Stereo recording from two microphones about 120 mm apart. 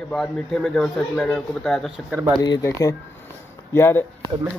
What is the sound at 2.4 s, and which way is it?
Speech, 40° left (ahead or behind).